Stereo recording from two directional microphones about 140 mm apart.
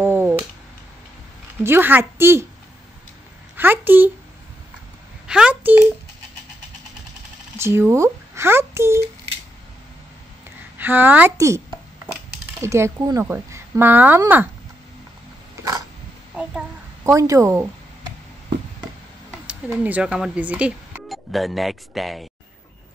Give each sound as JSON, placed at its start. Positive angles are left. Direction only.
{"t": 0.0, "sound": "a sound", "side_deg": -15}
{"t": 1.6, "sound": "speech", "side_deg": -15}
{"t": 3.5, "sound": "speech", "side_deg": -15}
{"t": 5.2, "sound": "speech", "side_deg": -5}
{"t": 7.5, "sound": "speech", "side_deg": -20}
{"t": 10.8, "sound": "speech", "side_deg": -15}
{"t": 12.6, "sound": "speech", "side_deg": -20}
{"t": 16.4, "sound": "a child's voice", "side_deg": -10}
{"t": 17.0, "sound": "speech", "side_deg": -20}
{"t": 19.4, "sound": "speech", "side_deg": -10}